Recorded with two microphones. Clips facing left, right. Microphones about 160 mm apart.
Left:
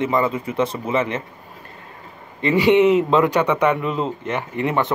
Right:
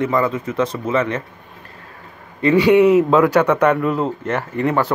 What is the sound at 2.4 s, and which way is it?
Speech, centre (ahead or behind).